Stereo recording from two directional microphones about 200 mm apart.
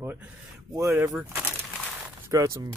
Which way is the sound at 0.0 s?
10° right (ahead or behind).